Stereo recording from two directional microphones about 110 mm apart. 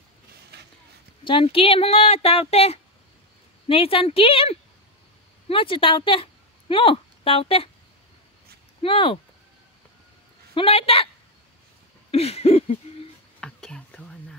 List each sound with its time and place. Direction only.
1.2 s speech: 55° left (ahead or behind)
3.6 s a woman's voice: 55° left (ahead or behind)
8.8 s speech: 55° left (ahead or behind)
10.5 s speech: 55° left (ahead or behind)
12.1 s a sound: 70° left (ahead or behind)
13.4 s whispering: 5° left (ahead or behind)